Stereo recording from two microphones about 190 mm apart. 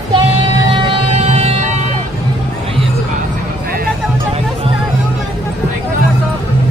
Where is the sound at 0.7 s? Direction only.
30° right (ahead or behind).